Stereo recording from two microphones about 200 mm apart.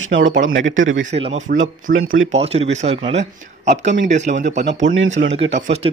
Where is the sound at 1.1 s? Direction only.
35° right (ahead or behind).